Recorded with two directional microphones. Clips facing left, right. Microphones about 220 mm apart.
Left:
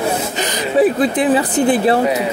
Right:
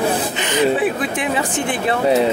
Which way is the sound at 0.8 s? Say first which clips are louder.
Left 6 dB; 35° left (ahead or behind).